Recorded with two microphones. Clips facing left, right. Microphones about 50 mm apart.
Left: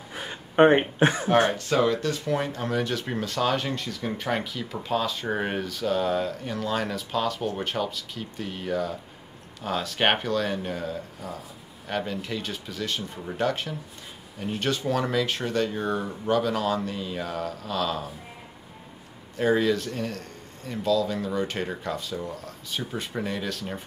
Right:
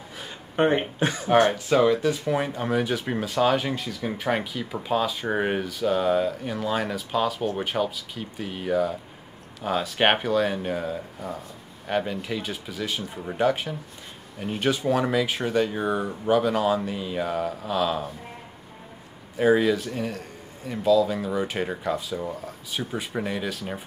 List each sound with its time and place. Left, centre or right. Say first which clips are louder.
0.2 s speech: left 5 dB; left
1.5 s speech: right 3 dB; centre
19.3 s speech: right 3 dB; centre